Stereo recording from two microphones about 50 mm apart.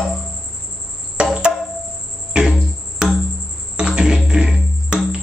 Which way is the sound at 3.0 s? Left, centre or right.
Centre.